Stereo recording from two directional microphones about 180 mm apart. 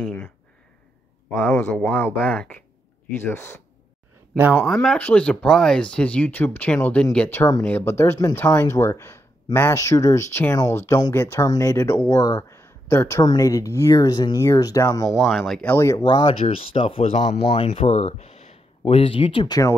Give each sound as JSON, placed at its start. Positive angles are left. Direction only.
{"t": 0.0, "sound": "speech", "side_deg": 10}
{"t": 1.4, "sound": "speech", "side_deg": 5}
{"t": 4.3, "sound": "speech", "side_deg": -5}
{"t": 4.7, "sound": "speech", "side_deg": 5}
{"t": 15.2, "sound": "speech", "side_deg": 0}